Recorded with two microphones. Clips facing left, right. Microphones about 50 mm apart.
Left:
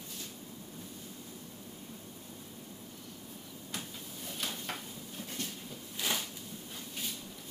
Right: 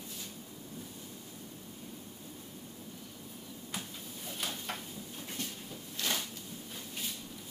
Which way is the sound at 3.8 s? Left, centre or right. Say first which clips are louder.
Even; centre.